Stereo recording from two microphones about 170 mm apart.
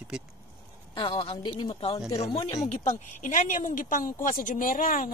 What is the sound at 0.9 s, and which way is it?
A woman's voice, 30° left (ahead or behind).